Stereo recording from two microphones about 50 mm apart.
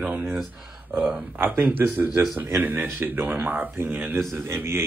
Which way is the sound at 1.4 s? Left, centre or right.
Right.